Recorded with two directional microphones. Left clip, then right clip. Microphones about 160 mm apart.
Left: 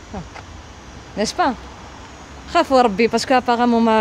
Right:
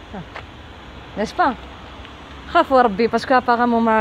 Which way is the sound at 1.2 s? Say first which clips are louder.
Even; 20° left (ahead or behind).